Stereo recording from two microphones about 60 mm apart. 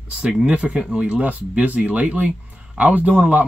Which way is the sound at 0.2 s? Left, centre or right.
Centre.